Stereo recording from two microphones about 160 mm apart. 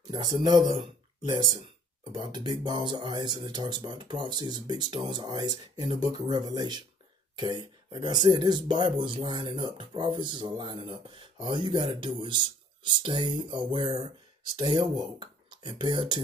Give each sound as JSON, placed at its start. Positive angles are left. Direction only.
{"t": 0.1, "sound": "speech", "side_deg": -25}